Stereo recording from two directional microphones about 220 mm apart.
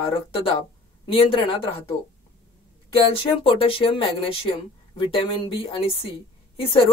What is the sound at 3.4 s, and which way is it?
Speech, 25° left (ahead or behind).